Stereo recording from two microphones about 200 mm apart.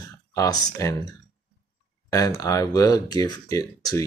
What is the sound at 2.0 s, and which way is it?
Speech, 15° left (ahead or behind).